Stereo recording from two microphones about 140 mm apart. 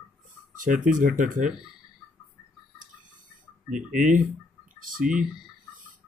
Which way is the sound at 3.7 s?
65° right (ahead or behind).